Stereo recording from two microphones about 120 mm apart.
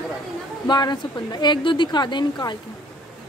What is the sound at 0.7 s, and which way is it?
A woman's voice, 35° left (ahead or behind).